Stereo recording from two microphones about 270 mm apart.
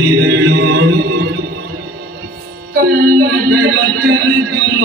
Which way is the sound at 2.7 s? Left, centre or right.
Right.